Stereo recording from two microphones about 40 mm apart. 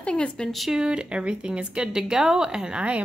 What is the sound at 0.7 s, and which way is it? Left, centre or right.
A woman's voice, right.